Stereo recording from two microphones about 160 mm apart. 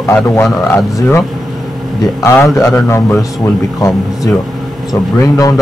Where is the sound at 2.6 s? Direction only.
15° left (ahead or behind).